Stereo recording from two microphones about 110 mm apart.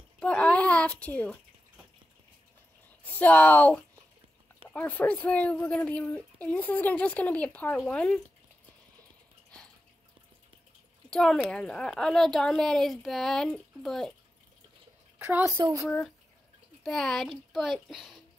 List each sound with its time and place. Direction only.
0.2 s a sound: 10° left (ahead or behind)
3.0 s speech: 15° left (ahead or behind)
11.1 s speech: 5° left (ahead or behind)
15.1 s a child's voice: 20° right (ahead or behind)
15.5 s speech: 35° right (ahead or behind)
16.8 s speech: 5° left (ahead or behind)